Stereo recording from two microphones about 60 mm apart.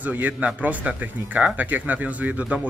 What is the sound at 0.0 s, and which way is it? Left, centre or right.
Speech, right.